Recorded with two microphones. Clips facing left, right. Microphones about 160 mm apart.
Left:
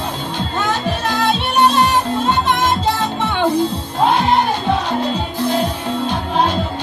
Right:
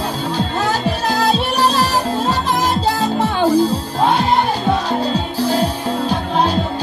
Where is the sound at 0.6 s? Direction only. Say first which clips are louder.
Left 2 dB; 35° right (ahead or behind).